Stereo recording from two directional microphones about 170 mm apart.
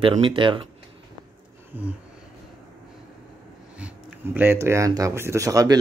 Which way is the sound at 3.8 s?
10° right (ahead or behind).